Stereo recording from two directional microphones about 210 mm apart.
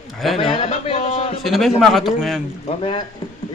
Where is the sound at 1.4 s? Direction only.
Centre (ahead or behind).